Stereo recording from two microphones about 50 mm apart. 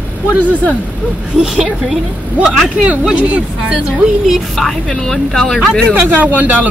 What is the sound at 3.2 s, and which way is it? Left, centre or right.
Speech, right.